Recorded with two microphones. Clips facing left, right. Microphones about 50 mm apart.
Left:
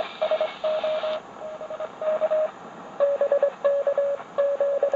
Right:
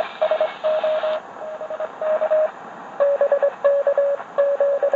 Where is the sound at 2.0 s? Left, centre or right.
Right.